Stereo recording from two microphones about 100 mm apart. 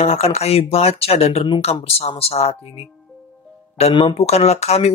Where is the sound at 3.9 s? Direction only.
80° left.